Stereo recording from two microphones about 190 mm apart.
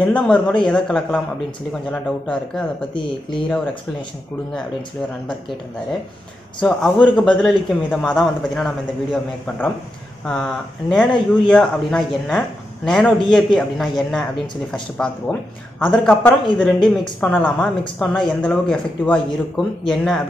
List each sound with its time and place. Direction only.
0.0 s a man's voice: 5° left (ahead or behind)
2.9 s speech: 25° left (ahead or behind)
6.6 s a man's voice: 5° left (ahead or behind)